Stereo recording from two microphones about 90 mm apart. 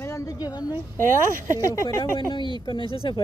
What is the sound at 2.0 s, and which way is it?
Speech, 60° left (ahead or behind).